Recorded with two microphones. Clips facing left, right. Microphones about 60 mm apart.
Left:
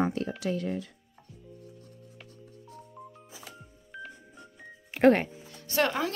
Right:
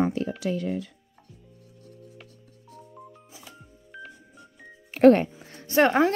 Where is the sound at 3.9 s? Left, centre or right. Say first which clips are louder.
Even; centre.